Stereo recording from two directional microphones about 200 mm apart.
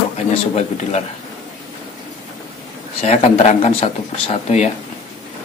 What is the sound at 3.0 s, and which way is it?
Speech, 30° left (ahead or behind).